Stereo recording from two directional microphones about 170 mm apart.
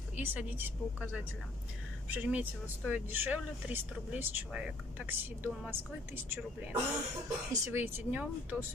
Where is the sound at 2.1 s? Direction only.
10° right (ahead or behind).